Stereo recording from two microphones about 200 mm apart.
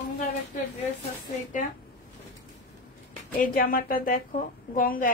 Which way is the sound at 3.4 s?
45° left (ahead or behind).